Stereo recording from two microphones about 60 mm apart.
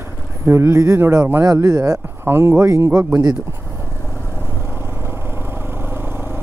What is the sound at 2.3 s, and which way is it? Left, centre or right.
Speech, right.